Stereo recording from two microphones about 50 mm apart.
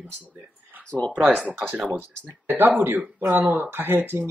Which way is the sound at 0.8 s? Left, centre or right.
Left.